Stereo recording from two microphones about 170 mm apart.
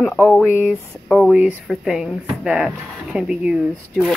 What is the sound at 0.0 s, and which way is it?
Speech, 10° left (ahead or behind).